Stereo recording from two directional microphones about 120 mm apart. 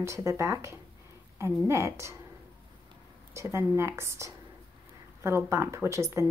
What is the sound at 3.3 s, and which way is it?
A woman's voice, 25° right (ahead or behind).